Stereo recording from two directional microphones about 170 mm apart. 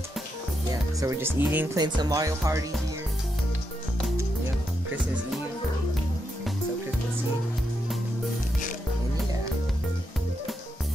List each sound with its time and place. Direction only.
0.7 s speech: 20° right (ahead or behind)
1.8 s speech: 20° right (ahead or behind)